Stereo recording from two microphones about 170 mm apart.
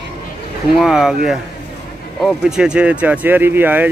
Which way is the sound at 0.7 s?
Centre (ahead or behind).